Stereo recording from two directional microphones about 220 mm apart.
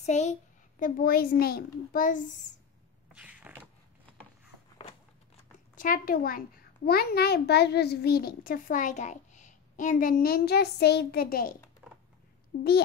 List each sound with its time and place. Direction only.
0.0 s a child's voice: 30° left (ahead or behind)
3.1 s creak: 5° right (ahead or behind)
5.8 s a child's voice: 40° left (ahead or behind)
11.8 s typing: 5° right (ahead or behind)
12.5 s a child's voice: 35° left (ahead or behind)